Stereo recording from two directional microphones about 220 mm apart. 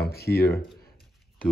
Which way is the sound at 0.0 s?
45° left (ahead or behind).